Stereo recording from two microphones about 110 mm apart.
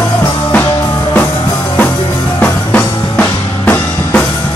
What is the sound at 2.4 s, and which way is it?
Music, 15° left (ahead or behind).